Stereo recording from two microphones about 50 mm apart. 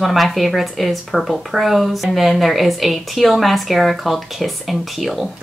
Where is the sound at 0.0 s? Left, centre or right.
Centre.